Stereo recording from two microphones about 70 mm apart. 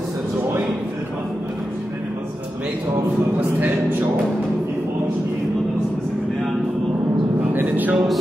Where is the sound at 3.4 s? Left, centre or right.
Right.